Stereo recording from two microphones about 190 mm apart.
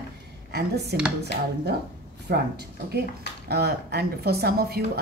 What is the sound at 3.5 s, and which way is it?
A woman's voice, 55° right (ahead or behind).